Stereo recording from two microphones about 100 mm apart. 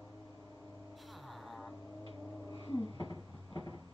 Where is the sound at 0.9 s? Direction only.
Centre (ahead or behind).